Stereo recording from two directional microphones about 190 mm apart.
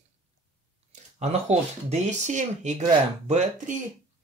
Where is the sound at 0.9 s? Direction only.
35° right (ahead or behind).